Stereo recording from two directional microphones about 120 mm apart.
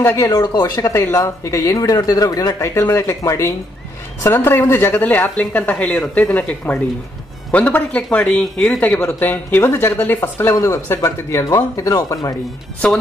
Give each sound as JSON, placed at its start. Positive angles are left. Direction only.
{"t": 0.0, "sound": "speech", "side_deg": 20}
{"t": 0.3, "sound": "speech", "side_deg": 35}